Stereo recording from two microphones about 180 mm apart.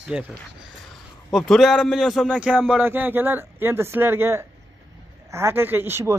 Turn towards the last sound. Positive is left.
turn(degrees=-15)  # may be behind; listen again after turning